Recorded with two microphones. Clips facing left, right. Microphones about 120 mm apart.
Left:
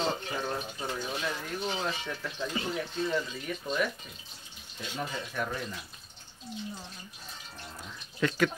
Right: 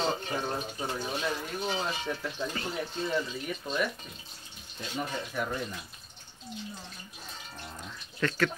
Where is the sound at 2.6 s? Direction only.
15° left (ahead or behind).